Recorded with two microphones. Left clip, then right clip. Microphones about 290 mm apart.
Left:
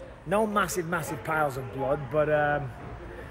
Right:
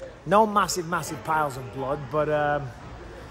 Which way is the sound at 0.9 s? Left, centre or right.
Centre.